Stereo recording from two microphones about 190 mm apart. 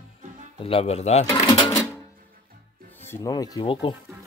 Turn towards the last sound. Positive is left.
turn(degrees=25)  # may be behind; listen again after turning